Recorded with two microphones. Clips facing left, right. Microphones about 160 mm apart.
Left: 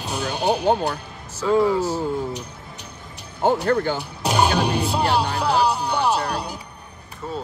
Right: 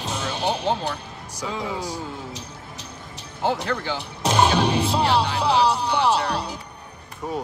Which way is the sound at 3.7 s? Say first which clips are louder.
Left 7 dB; 45° left (ahead or behind).